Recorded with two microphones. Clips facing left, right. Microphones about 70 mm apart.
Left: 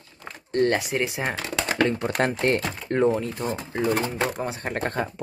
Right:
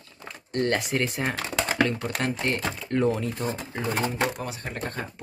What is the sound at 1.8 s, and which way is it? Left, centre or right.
Speech, left.